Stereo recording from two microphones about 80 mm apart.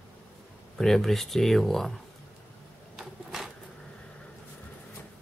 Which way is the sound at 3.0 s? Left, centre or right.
Centre.